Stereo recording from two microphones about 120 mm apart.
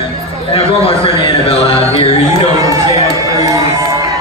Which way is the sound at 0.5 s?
55° left (ahead or behind).